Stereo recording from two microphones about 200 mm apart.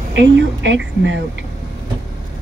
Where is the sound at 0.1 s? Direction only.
65° right (ahead or behind).